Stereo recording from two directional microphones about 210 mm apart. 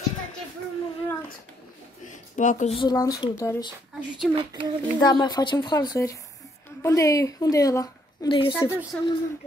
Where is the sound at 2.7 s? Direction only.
20° left (ahead or behind).